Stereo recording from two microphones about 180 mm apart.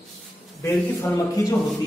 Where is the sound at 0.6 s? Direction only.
15° left (ahead or behind).